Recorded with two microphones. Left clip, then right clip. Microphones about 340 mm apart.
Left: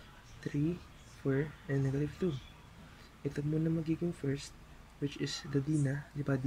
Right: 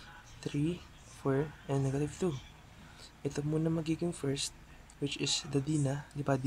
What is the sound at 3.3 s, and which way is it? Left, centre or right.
Speech, centre.